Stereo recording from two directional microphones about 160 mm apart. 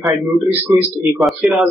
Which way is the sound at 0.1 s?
10° right (ahead or behind).